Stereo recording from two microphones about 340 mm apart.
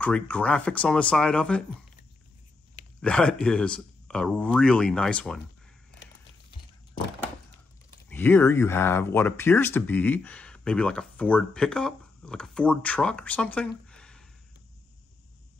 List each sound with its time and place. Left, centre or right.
0.0 s speech: centre
3.0 s speech: centre
8.1 s speech: centre